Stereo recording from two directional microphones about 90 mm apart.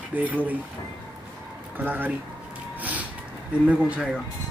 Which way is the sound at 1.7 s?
20° right (ahead or behind).